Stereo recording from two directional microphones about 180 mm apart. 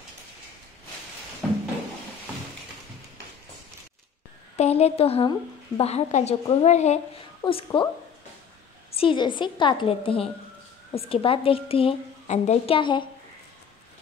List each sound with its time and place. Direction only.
1.4 s a sound: 5° left (ahead or behind)
4.6 s a woman's voice: 35° left (ahead or behind)
8.9 s a woman's voice: 30° left (ahead or behind)